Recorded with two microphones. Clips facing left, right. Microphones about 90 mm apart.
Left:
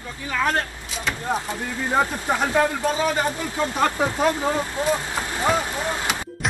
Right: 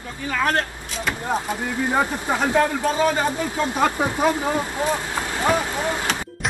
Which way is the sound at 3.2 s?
15° right (ahead or behind).